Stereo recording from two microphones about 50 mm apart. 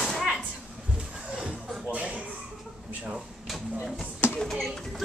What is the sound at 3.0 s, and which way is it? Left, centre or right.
Drawer open or close, centre.